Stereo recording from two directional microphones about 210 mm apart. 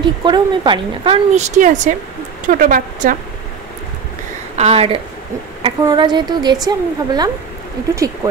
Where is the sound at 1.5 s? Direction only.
35° right (ahead or behind).